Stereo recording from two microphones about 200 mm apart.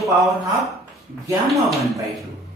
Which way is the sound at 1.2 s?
15° right (ahead or behind).